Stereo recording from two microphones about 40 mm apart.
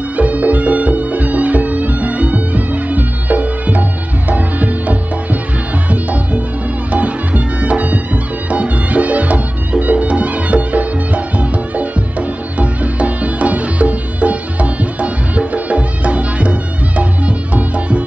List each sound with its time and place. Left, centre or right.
0.1 s music: right